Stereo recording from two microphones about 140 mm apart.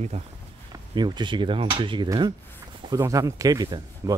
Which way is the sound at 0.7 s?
30° right (ahead or behind).